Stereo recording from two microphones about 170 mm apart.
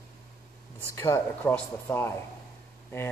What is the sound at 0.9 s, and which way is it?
A man's voice, 15° left (ahead or behind).